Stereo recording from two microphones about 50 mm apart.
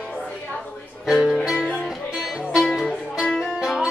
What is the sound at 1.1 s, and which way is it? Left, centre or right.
Music, centre.